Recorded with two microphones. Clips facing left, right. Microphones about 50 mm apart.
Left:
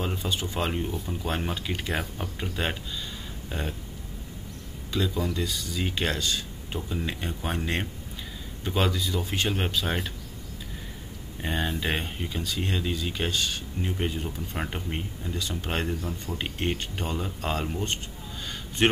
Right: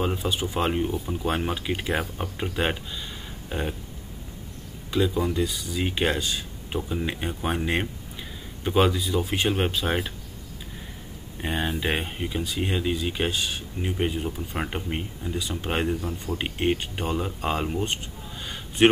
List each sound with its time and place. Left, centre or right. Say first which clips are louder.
0.0 s speech: right 4 dB; centre
4.9 s speech: right 4 dB; centre
11.4 s speech: right 2 dB; centre
18.4 s a sound: right 5 dB; centre